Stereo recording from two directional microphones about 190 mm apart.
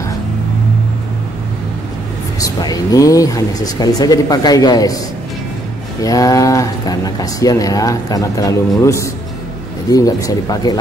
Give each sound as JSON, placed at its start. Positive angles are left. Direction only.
{"t": 2.4, "sound": "speech", "side_deg": 20}
{"t": 6.0, "sound": "speech", "side_deg": 20}